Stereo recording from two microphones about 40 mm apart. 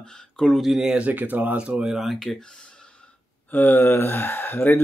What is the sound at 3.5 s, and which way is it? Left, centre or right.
Speech, left.